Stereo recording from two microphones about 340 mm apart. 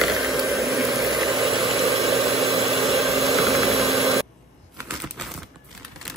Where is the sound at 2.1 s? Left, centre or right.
Centre.